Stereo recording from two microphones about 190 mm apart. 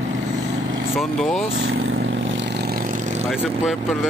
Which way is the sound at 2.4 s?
55° right (ahead or behind).